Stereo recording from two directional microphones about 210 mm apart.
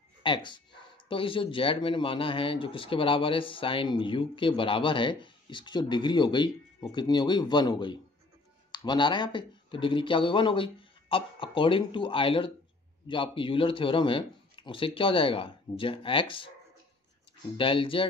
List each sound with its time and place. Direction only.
0.2 s speech: 20° left (ahead or behind)
17.6 s speech: 25° left (ahead or behind)